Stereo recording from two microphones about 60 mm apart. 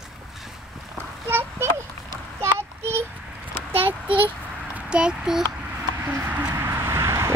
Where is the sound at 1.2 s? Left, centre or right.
Right.